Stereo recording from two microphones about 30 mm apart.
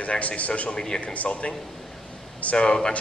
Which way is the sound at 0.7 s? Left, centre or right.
Left.